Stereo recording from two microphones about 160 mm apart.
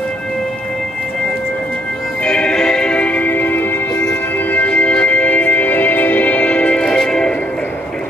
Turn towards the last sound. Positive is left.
turn(degrees=5)  # may be behind; listen again after turning